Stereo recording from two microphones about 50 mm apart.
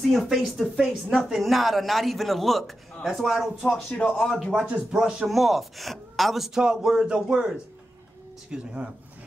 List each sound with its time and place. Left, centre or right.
0.0 s a woman's voice: centre
3.6 s speech: centre
4.2 s a woman's voice: centre
4.6 s speech: right
4.9 s a woman's voice: centre